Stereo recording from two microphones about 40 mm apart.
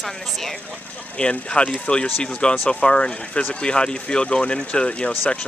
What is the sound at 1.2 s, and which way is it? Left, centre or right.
Speech, left.